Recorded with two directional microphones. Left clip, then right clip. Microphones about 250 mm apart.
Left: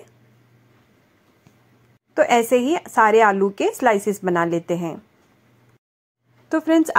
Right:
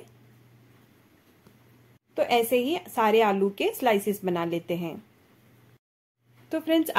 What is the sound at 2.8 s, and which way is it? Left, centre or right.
Speech, centre.